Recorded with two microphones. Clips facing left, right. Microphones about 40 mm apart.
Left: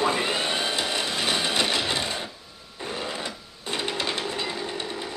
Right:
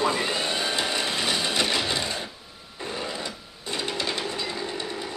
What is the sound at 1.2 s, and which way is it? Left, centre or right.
Train, centre.